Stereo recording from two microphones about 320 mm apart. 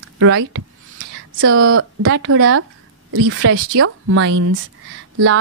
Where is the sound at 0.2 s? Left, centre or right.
Right.